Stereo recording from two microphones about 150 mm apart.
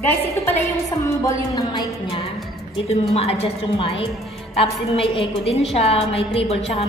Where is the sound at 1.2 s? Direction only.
25° left (ahead or behind).